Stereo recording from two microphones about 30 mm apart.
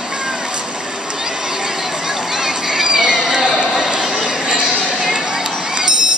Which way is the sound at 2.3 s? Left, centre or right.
Centre.